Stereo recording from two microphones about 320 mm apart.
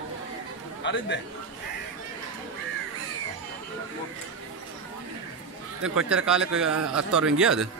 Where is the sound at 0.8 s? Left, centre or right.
Left.